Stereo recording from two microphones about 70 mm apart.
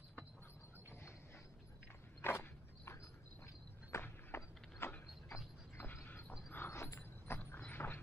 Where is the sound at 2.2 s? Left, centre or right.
Left.